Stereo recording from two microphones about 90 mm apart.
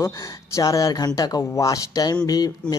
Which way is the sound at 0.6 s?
45° left (ahead or behind).